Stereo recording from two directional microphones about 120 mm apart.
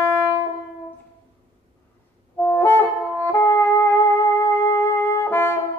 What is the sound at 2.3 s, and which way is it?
Music, 15° left (ahead or behind).